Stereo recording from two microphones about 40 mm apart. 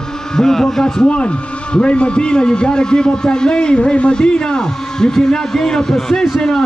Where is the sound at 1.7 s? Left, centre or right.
Left; by 6.6 s centre.